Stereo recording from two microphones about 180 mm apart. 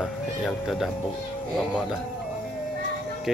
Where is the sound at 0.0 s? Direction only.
Centre (ahead or behind).